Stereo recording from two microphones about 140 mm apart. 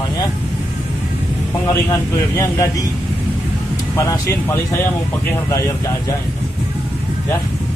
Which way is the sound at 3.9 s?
25° left (ahead or behind).